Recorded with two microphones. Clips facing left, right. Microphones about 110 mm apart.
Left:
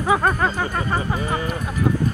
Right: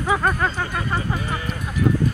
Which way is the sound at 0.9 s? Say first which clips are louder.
Left 2 dB; 30° left (ahead or behind).